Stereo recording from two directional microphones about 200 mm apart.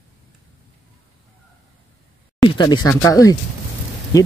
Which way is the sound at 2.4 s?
25° left (ahead or behind).